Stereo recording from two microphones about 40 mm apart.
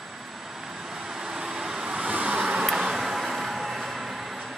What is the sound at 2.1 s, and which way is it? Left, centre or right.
Vehicle, right.